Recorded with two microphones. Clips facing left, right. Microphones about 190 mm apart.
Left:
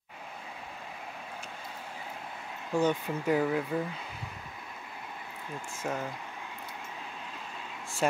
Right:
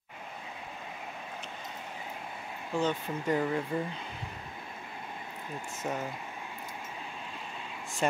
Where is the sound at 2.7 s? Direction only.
10° left (ahead or behind).